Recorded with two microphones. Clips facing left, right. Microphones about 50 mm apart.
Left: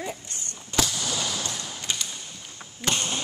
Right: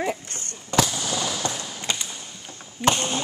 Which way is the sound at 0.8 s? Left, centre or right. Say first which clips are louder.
Right 3 dB; centre.